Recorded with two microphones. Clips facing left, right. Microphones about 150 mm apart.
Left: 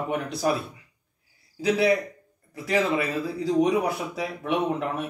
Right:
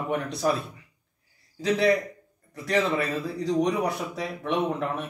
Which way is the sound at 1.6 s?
5° left (ahead or behind).